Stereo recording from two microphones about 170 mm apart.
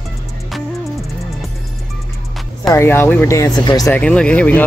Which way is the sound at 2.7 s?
15° left (ahead or behind).